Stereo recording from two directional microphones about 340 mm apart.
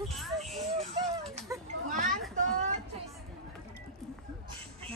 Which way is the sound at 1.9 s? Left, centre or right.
Right.